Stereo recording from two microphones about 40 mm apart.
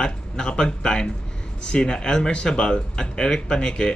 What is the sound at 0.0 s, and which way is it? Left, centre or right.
Speech, left.